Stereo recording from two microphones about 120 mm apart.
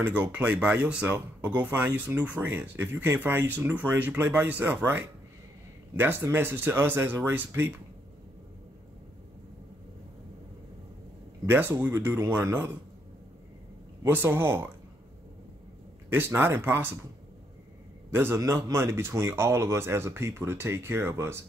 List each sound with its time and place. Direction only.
0.2 s a man's voice: 10° right (ahead or behind)
11.4 s a man's voice: 20° right (ahead or behind)
14.0 s a man's voice: 20° right (ahead or behind)
16.1 s speech: 15° right (ahead or behind)
18.1 s a man's voice: 20° right (ahead or behind)